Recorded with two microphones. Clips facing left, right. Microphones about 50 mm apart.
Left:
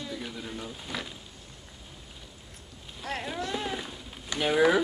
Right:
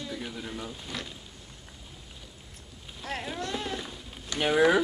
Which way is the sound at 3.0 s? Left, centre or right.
Centre.